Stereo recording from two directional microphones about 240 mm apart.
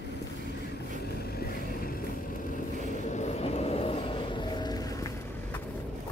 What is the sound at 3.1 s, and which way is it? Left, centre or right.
Vehicle, left.